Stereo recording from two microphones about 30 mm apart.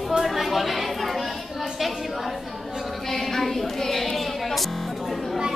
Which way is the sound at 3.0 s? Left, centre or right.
Centre.